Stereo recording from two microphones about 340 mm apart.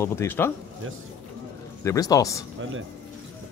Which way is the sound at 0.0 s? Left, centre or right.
Centre.